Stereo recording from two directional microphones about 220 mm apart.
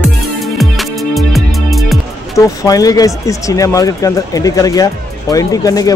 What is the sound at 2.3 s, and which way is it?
Speech, 15° left (ahead or behind).